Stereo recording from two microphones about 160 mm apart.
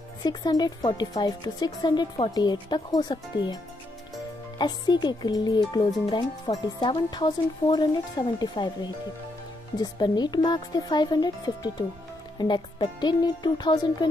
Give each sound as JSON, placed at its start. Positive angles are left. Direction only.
{"t": 0.2, "sound": "speech", "side_deg": 25}
{"t": 4.6, "sound": "speech", "side_deg": 25}